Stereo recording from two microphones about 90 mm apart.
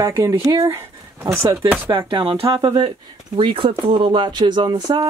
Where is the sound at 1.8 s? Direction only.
65° right (ahead or behind).